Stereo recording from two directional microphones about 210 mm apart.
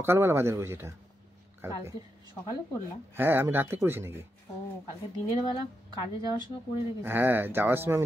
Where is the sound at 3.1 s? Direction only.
10° right (ahead or behind).